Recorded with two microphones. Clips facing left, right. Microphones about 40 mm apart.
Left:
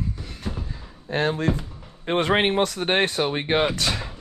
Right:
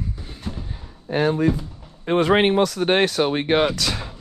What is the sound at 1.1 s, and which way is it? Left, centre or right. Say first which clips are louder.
Speech: right 3 dB; left.